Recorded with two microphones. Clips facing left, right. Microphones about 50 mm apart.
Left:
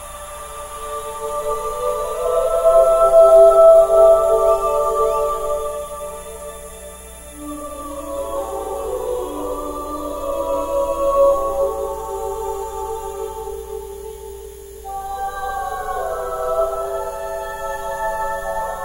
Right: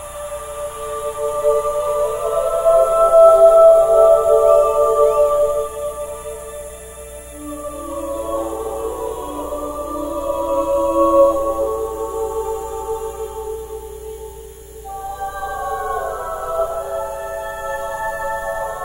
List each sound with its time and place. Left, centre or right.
0.6 s music: centre
7.9 s music: centre
9.7 s music: right
15.1 s music: centre